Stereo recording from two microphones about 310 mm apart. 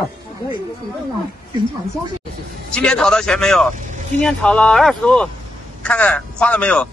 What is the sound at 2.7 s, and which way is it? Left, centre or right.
Speech, centre.